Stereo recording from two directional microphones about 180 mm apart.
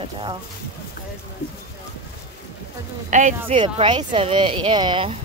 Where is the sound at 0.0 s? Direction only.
25° right (ahead or behind).